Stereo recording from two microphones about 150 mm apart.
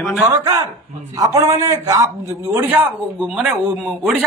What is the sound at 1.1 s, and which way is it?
A man's voice, 25° right (ahead or behind).